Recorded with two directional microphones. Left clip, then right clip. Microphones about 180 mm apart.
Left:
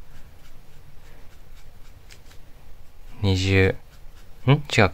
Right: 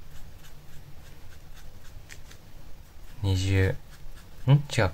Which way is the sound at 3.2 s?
50° left (ahead or behind).